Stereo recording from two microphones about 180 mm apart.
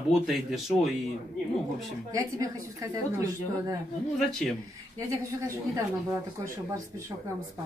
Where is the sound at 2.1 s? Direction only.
20° right (ahead or behind).